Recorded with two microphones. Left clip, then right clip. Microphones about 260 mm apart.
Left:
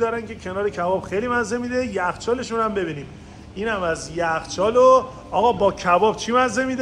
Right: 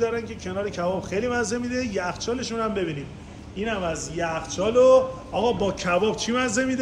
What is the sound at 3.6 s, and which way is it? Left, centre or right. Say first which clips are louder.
A man's voice: left 4 dB; centre.